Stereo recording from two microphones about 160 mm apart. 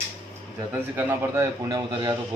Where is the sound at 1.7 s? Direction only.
25° right (ahead or behind).